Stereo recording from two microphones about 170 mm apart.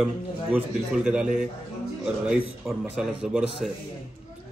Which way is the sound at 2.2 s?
5° right (ahead or behind).